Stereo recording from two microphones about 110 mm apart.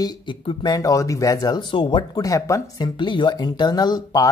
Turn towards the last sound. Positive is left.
turn(degrees=35)  # may be behind; listen again after turning